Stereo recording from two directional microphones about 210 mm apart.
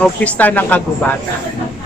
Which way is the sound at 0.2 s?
10° left (ahead or behind).